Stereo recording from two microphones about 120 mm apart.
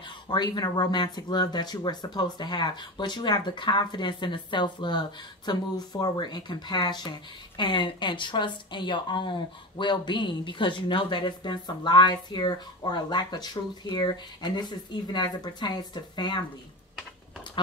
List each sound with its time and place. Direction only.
0.3 s speech: 40° left (ahead or behind)